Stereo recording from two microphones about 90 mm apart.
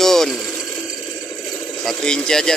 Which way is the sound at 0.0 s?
5° left (ahead or behind).